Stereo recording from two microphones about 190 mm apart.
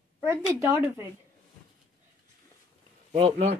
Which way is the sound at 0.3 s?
15° right (ahead or behind).